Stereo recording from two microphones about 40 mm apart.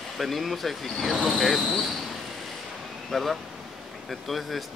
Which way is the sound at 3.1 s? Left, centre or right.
Centre.